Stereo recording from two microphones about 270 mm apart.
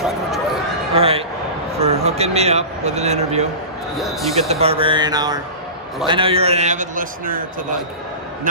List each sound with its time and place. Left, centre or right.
0.9 s a man's voice: right
4.0 s speech: centre
4.4 s a man's voice: right